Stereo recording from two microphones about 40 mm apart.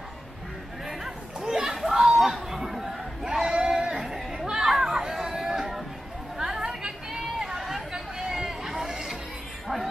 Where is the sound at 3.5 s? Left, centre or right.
Right.